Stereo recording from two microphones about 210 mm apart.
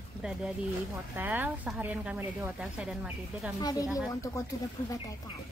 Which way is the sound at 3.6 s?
20° left (ahead or behind).